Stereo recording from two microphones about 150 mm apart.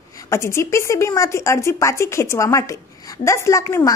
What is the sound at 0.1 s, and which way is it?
A woman's voice, 20° left (ahead or behind).